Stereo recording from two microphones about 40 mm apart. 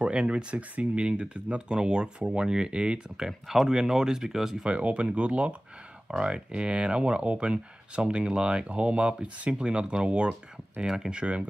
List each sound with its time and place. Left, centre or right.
0.0 s speech: right
3.3 s speech: centre
4.6 s speech: right
6.0 s speech: right
10.9 s speech: centre